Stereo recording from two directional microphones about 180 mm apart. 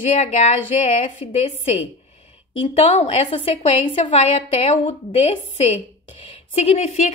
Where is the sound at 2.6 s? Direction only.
35° left (ahead or behind).